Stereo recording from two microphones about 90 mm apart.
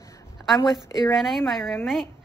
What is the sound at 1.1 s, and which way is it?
Speech, centre (ahead or behind).